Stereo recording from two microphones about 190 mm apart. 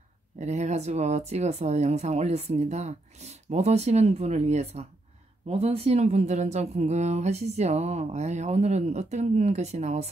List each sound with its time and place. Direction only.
0.4 s speech: 35° right (ahead or behind)